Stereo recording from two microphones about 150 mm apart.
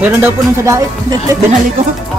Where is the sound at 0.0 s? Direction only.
15° right (ahead or behind).